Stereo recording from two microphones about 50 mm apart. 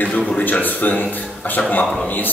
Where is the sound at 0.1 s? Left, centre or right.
Centre.